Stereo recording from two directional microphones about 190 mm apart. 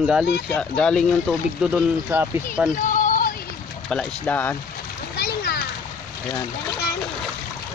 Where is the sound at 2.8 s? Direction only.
45° left (ahead or behind).